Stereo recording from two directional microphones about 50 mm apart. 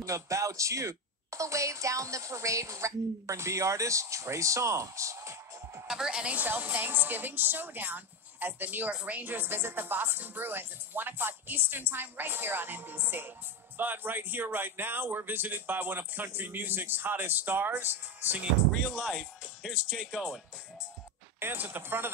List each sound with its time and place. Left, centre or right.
0.0 s a woman's voice: right
5.9 s speech: centre
6.2 s a woman's voice: right
9.2 s speech: right
18.7 s speech: centre
19.7 s speech: centre
21.4 s speech: right